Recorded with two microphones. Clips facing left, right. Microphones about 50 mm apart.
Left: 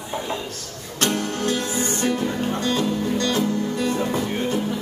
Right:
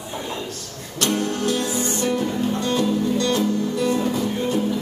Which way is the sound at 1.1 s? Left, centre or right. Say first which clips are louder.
Right 2 dB; left.